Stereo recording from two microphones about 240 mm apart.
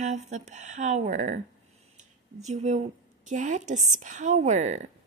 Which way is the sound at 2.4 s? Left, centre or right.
Right.